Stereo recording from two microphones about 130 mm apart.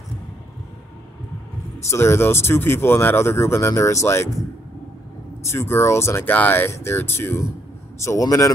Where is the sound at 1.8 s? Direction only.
20° left (ahead or behind).